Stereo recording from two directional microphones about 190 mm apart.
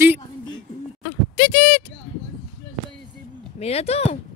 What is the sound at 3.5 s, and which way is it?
Speech, 35° left (ahead or behind).